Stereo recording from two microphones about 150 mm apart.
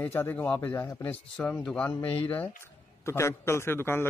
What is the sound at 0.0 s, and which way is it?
A man's voice, 15° left (ahead or behind).